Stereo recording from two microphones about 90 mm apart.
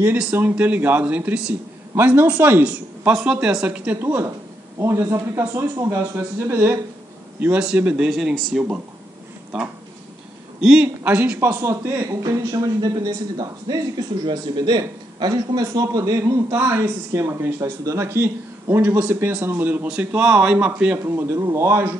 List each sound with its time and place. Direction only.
0.2 s a man's voice: 20° right (ahead or behind)
10.6 s speech: 5° right (ahead or behind)
11.1 s speech: 20° right (ahead or behind)
11.3 s speech: 35° right (ahead or behind)
20.2 s speech: 10° right (ahead or behind)
21.0 s speech: 30° right (ahead or behind)